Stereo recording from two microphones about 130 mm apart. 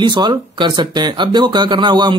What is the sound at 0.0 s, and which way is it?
Speech, 35° right (ahead or behind).